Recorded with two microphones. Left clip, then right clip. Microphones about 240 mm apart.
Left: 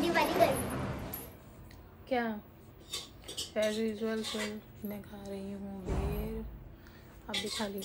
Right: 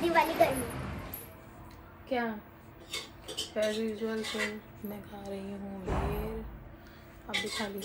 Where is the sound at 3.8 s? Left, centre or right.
Centre.